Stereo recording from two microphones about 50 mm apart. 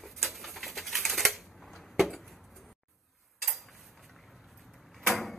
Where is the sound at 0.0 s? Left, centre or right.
Centre.